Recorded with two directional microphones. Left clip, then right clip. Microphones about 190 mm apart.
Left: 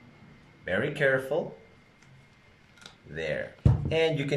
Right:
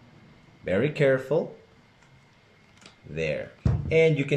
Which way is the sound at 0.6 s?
25° right (ahead or behind).